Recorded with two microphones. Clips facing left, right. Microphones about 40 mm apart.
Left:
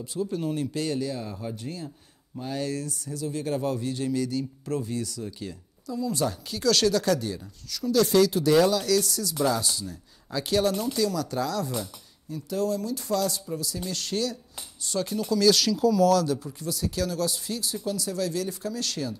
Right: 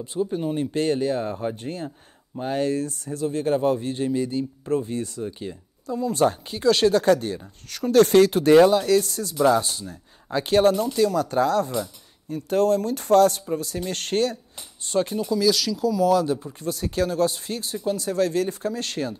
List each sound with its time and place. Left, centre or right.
0.0 s speech: right
0.7 s speech: right
5.9 s speech: right
6.6 s speech: right
15.2 s speech: centre
16.1 s speech: right
16.5 s speech: right